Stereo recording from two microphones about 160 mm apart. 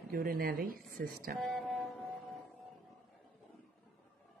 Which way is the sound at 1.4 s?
5° left (ahead or behind).